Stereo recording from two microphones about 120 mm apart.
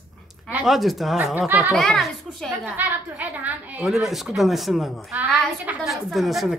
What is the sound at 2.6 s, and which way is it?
A woman's voice, 15° right (ahead or behind).